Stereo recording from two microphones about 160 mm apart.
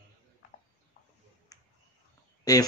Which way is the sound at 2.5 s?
25° left (ahead or behind).